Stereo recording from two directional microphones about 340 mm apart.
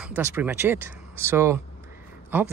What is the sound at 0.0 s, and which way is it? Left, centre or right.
Speech, centre.